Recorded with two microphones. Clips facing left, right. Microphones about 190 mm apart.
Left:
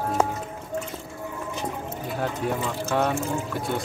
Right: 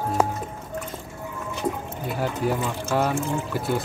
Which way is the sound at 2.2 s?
5° right (ahead or behind).